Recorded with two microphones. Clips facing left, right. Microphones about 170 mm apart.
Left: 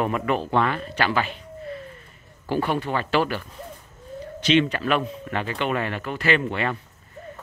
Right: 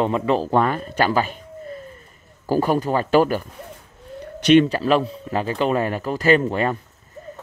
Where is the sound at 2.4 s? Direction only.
40° right (ahead or behind).